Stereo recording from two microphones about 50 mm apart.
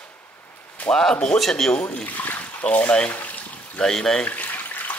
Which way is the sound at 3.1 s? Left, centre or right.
Left.